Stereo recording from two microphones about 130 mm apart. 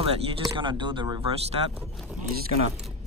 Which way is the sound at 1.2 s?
50° right (ahead or behind).